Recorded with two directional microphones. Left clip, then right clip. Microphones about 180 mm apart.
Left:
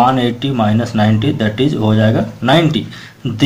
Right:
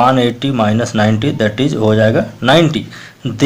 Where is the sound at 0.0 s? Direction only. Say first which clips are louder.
Right 1 dB; 35° right (ahead or behind).